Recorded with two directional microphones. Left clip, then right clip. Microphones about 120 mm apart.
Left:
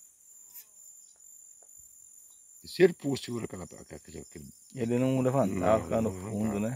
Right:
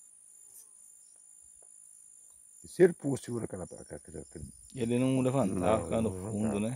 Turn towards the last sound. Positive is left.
turn(degrees=-15)  # may be behind; listen again after turning